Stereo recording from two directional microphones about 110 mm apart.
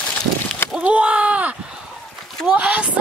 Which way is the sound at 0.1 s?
15° left (ahead or behind).